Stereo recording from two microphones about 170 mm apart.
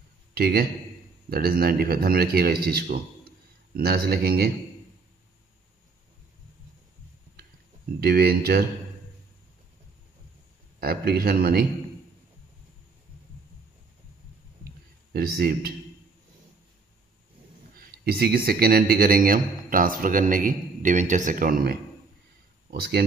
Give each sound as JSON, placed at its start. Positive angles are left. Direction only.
{"t": 0.3, "sound": "a man's voice", "side_deg": -65}
{"t": 8.0, "sound": "speech", "side_deg": -65}
{"t": 10.8, "sound": "speech", "side_deg": -60}
{"t": 15.1, "sound": "speech", "side_deg": -65}
{"t": 17.7, "sound": "speech", "side_deg": -65}